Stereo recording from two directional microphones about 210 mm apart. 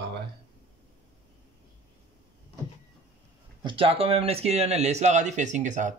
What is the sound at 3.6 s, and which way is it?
Speech, 25° right (ahead or behind).